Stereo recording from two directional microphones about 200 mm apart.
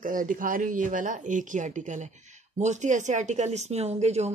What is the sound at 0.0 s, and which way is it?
Speech, 40° right (ahead or behind).